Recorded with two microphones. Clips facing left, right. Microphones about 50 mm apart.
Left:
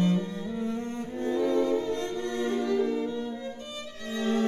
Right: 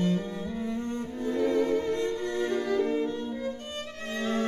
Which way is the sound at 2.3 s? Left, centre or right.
Right.